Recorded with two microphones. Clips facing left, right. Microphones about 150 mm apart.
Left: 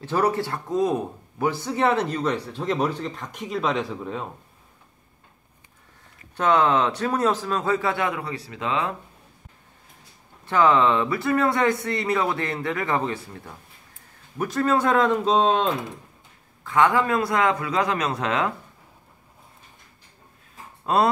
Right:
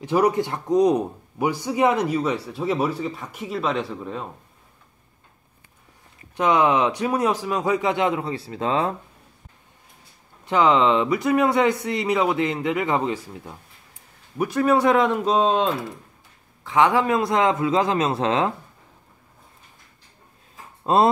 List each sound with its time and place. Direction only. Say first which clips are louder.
0.0 s speech: right 3 dB; 15° right (ahead or behind)
6.3 s speech: right 1 dB; 15° right (ahead or behind); by 8.9 s 35° right (ahead or behind)
10.4 s speech: right 1 dB; 15° right (ahead or behind)
16.6 s a man's voice: right 1 dB; 20° right (ahead or behind)
20.8 s speech: right 3 dB; 25° right (ahead or behind)